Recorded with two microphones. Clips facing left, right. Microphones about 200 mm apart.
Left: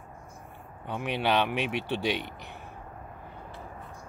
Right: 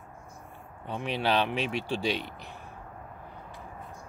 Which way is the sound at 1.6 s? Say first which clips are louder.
Even; 60° left (ahead or behind).